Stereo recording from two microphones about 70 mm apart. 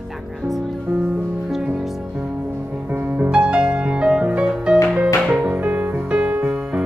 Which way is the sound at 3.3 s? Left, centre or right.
Centre.